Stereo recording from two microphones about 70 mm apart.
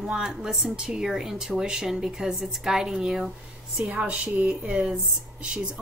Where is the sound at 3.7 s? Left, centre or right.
Centre.